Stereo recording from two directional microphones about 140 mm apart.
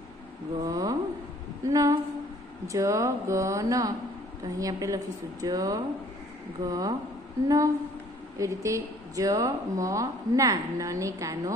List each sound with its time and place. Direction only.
0.6 s a woman's voice: 25° right (ahead or behind)